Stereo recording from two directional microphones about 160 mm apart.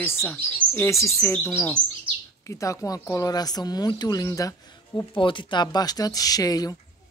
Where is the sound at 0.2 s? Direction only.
15° left (ahead or behind).